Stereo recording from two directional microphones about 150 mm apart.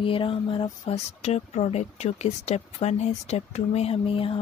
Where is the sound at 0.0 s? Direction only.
35° left (ahead or behind).